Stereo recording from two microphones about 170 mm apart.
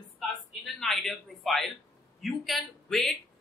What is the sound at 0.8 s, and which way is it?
A man's voice, centre (ahead or behind).